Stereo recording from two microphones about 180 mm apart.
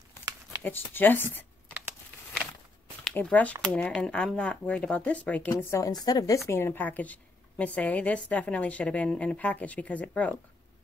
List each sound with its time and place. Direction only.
0.6 s a woman's voice: 10° left (ahead or behind)
3.0 s a woman's voice: 5° left (ahead or behind)